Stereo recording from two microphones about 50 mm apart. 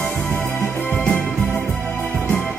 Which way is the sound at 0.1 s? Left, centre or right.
Left.